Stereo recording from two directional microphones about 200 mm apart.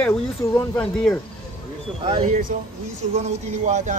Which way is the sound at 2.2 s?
45° right (ahead or behind).